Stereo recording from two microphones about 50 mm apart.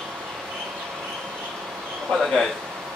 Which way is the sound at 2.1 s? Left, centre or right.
Centre.